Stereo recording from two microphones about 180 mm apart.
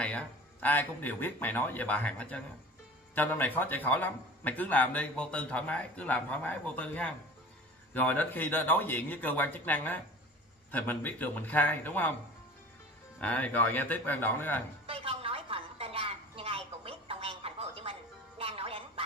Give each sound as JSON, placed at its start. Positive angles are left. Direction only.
{"t": 0.0, "sound": "a man's voice", "side_deg": 10}
{"t": 13.2, "sound": "a man's voice", "side_deg": 10}
{"t": 14.9, "sound": "a sound", "side_deg": -30}
{"t": 18.4, "sound": "music", "side_deg": -30}